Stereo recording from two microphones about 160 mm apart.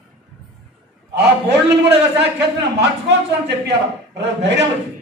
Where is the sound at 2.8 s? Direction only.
90° right.